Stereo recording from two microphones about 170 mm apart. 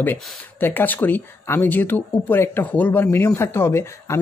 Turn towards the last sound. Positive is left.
turn(degrees=15)  # may be behind; listen again after turning